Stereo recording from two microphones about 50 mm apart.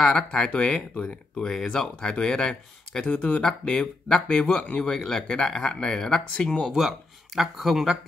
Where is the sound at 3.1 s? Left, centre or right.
Left; by 6.2 s centre.